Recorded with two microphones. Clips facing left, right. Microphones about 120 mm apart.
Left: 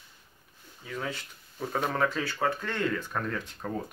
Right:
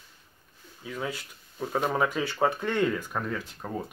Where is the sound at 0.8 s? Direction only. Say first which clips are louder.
Right 2 dB; 5° right (ahead or behind).